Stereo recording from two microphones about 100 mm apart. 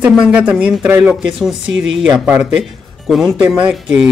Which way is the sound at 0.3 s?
10° right (ahead or behind).